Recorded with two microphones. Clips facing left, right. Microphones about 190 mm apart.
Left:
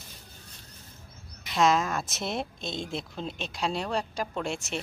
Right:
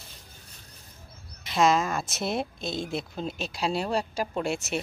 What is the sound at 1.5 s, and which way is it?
Speech, centre (ahead or behind).